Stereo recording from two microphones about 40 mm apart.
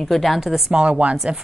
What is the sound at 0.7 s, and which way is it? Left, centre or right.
Speech, right.